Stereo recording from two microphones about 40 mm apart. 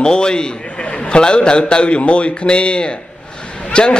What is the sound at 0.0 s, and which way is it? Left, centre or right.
A man's voice, centre.